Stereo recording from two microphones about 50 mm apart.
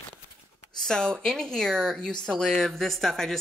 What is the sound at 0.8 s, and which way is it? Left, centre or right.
A woman's voice, centre.